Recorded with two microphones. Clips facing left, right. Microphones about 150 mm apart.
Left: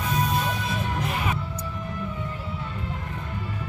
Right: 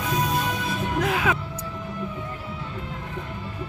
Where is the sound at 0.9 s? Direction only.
90° right.